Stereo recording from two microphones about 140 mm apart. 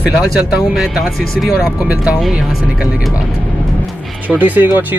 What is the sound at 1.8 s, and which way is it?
Speech, 10° right (ahead or behind).